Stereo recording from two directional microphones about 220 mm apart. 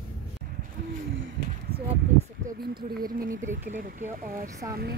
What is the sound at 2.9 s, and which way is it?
Speech, 40° right (ahead or behind).